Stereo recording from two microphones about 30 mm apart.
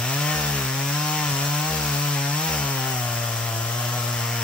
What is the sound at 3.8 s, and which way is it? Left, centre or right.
Chainsaw, left.